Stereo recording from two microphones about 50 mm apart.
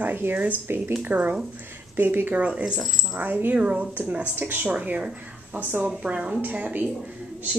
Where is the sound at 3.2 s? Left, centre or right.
Right.